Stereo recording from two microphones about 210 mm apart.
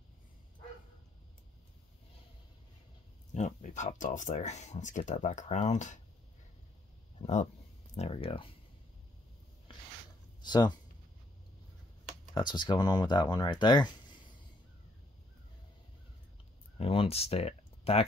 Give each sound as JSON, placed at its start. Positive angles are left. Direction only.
{"t": 3.3, "sound": "speech", "side_deg": 35}
{"t": 7.2, "sound": "speech", "side_deg": 30}
{"t": 10.4, "sound": "speech", "side_deg": 20}
{"t": 12.4, "sound": "speech", "side_deg": 20}
{"t": 16.7, "sound": "speech", "side_deg": 25}